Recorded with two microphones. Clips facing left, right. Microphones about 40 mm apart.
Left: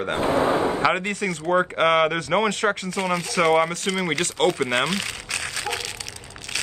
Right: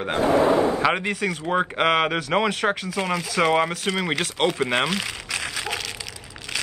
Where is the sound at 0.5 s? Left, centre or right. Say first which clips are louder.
Right 2 dB; left.